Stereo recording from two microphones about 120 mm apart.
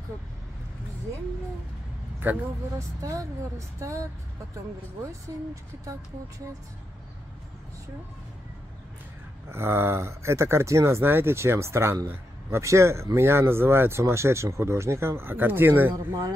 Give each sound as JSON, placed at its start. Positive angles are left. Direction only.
{"t": 2.2, "sound": "speech", "side_deg": -15}
{"t": 3.0, "sound": "speech", "side_deg": -25}
{"t": 9.5, "sound": "speech", "side_deg": -20}
{"t": 15.9, "sound": "speech", "side_deg": -30}